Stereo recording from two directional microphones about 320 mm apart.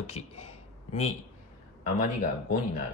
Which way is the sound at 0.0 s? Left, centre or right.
Centre.